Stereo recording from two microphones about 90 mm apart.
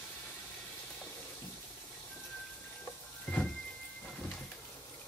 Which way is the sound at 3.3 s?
15° left (ahead or behind).